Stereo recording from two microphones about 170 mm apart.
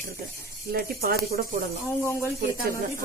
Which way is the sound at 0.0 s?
60° right (ahead or behind).